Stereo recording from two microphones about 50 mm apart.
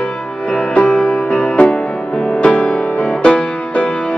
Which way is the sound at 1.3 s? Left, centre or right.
Centre.